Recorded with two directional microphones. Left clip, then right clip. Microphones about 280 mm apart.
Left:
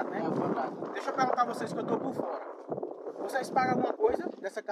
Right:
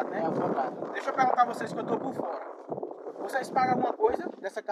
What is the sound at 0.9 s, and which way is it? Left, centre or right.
Speech, centre.